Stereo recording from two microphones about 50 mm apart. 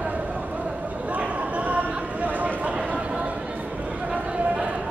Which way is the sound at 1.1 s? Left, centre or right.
Right.